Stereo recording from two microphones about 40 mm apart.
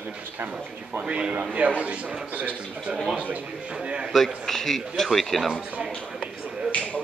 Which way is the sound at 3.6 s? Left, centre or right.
Right.